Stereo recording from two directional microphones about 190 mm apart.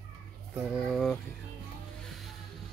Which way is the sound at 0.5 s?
5° right (ahead or behind).